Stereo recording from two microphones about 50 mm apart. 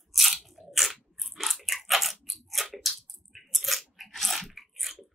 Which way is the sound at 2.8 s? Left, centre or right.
Centre.